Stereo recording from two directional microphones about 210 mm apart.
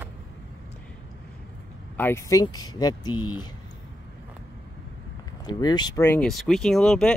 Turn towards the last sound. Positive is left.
turn(degrees=0)  # may be behind; listen again after turning